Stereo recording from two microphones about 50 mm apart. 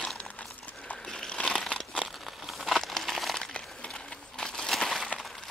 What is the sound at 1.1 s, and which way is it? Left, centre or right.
Crumpling, centre.